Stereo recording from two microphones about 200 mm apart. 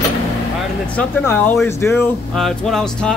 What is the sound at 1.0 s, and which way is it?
Speech, 10° left (ahead or behind).